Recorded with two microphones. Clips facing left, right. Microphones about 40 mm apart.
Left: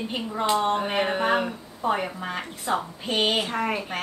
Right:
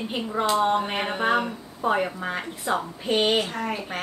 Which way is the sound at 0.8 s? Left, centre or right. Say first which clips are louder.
Left 1 dB; centre.